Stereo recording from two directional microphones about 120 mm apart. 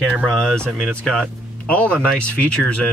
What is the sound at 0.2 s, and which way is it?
Speech, 5° left (ahead or behind).